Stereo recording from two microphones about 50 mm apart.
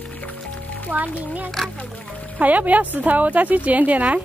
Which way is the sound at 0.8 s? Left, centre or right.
Right.